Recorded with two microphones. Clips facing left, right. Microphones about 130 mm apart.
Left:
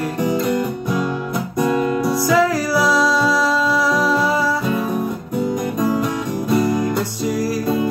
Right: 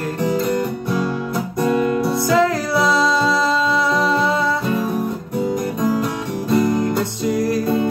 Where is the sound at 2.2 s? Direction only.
25° right (ahead or behind).